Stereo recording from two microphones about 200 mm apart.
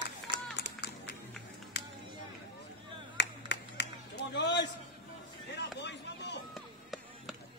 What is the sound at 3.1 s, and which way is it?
Clapping, 60° left (ahead or behind).